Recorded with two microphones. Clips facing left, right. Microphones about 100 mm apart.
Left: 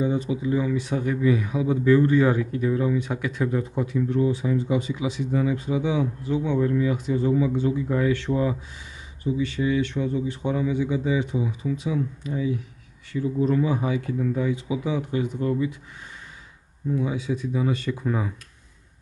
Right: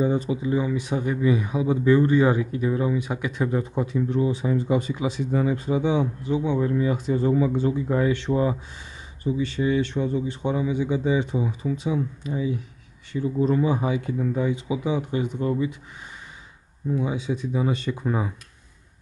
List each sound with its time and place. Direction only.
0.0 s speech: 35° right (ahead or behind)
0.4 s speech: 20° right (ahead or behind)
4.6 s speech: 45° right (ahead or behind); by 6.8 s 15° right (ahead or behind)
6.8 s speech: 35° right (ahead or behind)
16.9 s speech: 25° right (ahead or behind)